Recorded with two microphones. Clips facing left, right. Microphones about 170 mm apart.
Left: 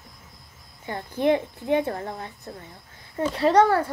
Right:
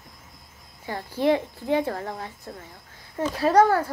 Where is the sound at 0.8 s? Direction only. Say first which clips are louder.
Even; 20° left (ahead or behind).